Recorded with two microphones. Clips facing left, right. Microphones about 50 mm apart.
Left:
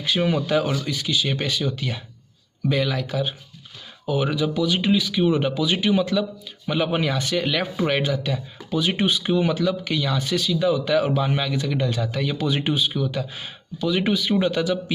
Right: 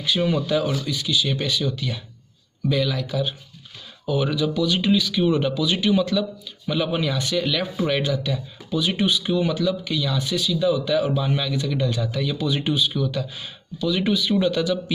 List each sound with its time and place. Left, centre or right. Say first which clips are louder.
0.0 s speech: even; left
4.0 s speech: even; left
6.7 s speech: left 1 dB; left
12.9 s speech: even; left
13.2 s speech: even; left